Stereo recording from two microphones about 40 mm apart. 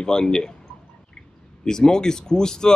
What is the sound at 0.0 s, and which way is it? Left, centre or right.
Speech, centre.